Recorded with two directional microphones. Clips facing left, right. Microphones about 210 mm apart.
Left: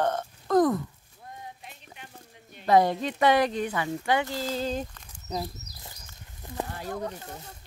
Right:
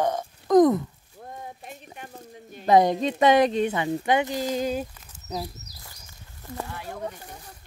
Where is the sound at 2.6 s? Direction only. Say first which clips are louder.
Right 3 dB; 20° right (ahead or behind).